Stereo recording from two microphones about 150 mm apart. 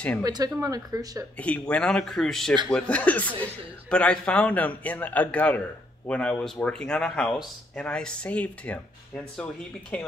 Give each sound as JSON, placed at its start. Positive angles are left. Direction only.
{"t": 0.2, "sound": "speech", "side_deg": -25}
{"t": 1.4, "sound": "a man's voice", "side_deg": 10}